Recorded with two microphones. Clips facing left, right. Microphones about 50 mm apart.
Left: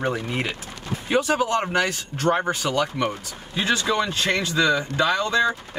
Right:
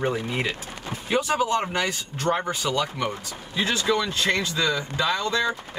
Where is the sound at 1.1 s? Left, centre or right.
Left.